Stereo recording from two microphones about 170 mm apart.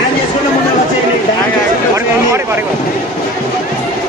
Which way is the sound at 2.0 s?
15° right (ahead or behind).